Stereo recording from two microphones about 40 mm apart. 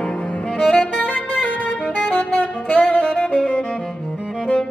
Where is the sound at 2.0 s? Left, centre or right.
Left.